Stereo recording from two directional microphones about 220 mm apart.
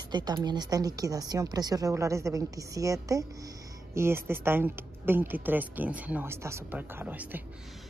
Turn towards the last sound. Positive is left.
turn(degrees=-5)  # may be behind; listen again after turning